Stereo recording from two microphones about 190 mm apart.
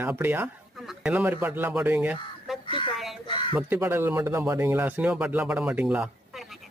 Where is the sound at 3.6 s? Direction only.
10° right (ahead or behind).